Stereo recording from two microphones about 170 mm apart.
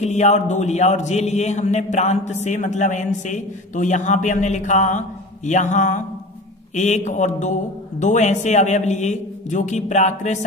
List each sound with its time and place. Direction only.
0.0 s speech: 40° left (ahead or behind)